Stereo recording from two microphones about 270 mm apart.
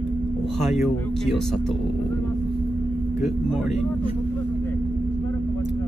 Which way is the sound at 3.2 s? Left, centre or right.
Centre.